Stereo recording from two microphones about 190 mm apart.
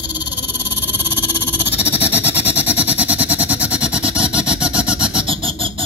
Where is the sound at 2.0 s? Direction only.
10° right (ahead or behind).